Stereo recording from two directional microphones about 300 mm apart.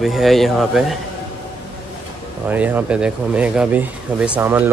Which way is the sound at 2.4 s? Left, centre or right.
Centre.